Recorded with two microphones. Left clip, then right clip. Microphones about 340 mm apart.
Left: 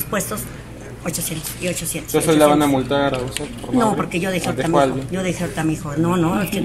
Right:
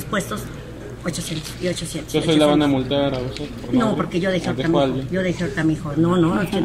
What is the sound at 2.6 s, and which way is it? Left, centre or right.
Speech, left.